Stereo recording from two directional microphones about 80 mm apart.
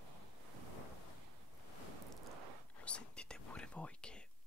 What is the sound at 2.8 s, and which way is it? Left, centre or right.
Whispering, centre.